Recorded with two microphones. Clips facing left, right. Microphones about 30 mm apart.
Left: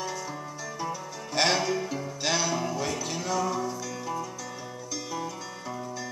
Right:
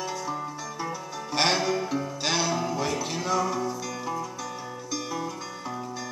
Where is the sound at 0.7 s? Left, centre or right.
Centre.